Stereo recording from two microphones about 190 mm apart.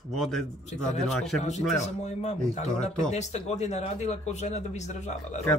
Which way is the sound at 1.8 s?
35° left (ahead or behind).